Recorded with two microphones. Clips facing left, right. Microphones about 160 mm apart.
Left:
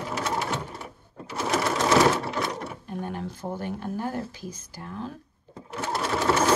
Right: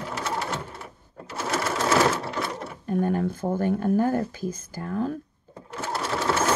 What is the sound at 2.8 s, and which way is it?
Speech, 45° right (ahead or behind).